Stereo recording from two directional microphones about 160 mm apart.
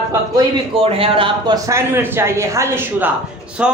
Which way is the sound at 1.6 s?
15° right (ahead or behind).